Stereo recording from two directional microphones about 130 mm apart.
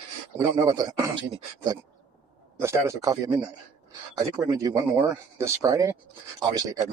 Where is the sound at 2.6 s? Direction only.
20° right (ahead or behind).